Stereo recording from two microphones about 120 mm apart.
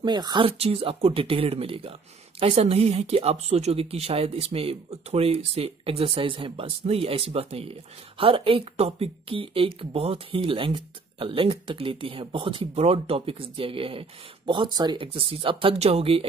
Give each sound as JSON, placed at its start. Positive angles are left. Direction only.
{"t": 0.0, "sound": "speech", "side_deg": -40}